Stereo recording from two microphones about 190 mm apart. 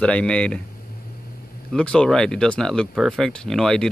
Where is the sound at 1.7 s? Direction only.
5° left (ahead or behind).